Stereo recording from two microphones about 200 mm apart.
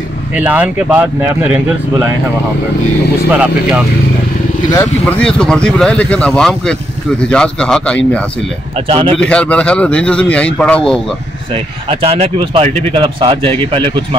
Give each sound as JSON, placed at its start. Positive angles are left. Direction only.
{"t": 0.3, "sound": "speech", "side_deg": -5}
{"t": 3.3, "sound": "speech", "side_deg": -5}
{"t": 4.7, "sound": "speech", "side_deg": 5}
{"t": 8.7, "sound": "speech", "side_deg": -25}
{"t": 9.2, "sound": "speech", "side_deg": 5}
{"t": 11.5, "sound": "speech", "side_deg": -30}